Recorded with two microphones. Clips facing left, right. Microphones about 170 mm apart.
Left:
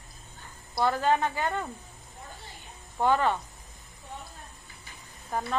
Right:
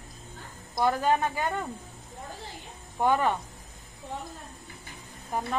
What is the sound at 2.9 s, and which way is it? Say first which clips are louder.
Speech: even; 15° right (ahead or behind).